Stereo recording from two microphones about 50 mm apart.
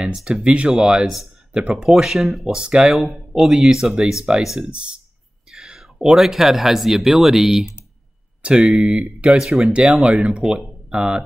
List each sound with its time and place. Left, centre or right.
0.1 s speech: centre
1.9 s speech: centre
2.8 s speech: centre
4.6 s speech: right
5.5 s a sound: centre
6.1 s speech: centre
8.4 s speech: centre